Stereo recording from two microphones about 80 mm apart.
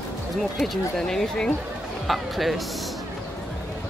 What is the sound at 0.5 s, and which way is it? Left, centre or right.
Speech, centre.